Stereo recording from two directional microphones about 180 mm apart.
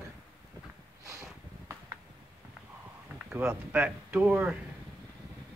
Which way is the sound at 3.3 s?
10° right (ahead or behind).